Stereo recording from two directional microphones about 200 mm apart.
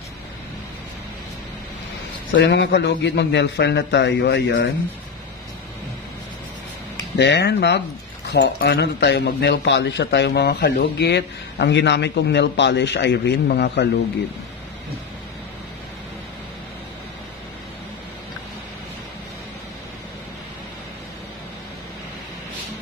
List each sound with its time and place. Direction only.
2.3 s a man's voice: 60° left (ahead or behind)
7.2 s a man's voice: 60° left (ahead or behind)